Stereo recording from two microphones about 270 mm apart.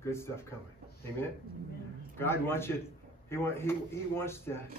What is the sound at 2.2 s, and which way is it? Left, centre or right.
Speech, centre.